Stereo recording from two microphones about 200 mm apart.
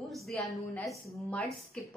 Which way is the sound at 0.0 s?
Centre (ahead or behind).